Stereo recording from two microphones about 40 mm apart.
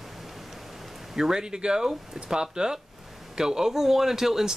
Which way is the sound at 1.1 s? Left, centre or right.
Centre.